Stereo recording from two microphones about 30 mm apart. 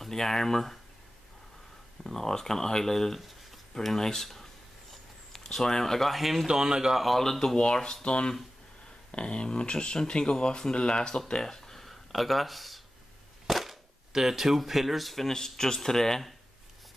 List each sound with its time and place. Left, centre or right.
0.0 s speech: centre
2.0 s speech: centre
6.0 s speech: centre
6.4 s speech: centre
7.1 s speech: centre
7.5 s speech: left
11.4 s a sound: centre
14.1 s speech: centre
15.2 s speech: centre